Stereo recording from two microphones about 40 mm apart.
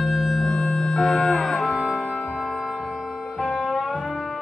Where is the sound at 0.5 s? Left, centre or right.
Left.